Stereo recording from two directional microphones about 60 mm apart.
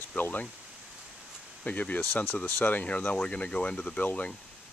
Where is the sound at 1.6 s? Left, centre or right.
Left.